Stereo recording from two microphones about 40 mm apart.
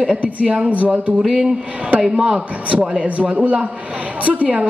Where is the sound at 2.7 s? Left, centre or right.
Right.